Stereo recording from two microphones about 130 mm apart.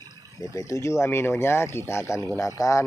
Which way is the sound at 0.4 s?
25° left (ahead or behind).